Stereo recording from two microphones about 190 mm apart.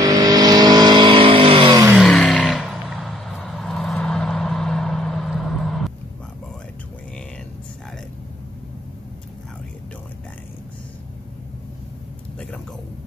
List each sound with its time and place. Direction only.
0.0 s vehicle: 20° right (ahead or behind)
2.0 s vehicle: centre (ahead or behind)